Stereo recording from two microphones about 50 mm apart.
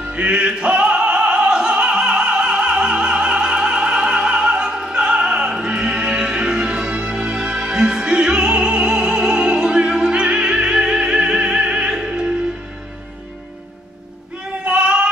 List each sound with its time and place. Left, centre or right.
0.1 s opera: right
14.6 s child singing: centre